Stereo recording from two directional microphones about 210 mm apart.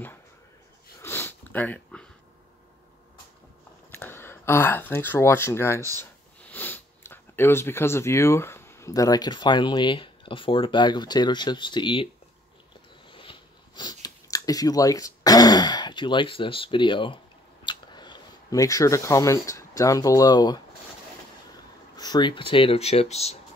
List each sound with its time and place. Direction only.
1.0 s sniff: 10° left (ahead or behind)
3.9 s speech: 10° left (ahead or behind)
13.1 s a sound: 25° left (ahead or behind)
17.6 s speech: 20° left (ahead or behind)
21.9 s speech: 20° left (ahead or behind)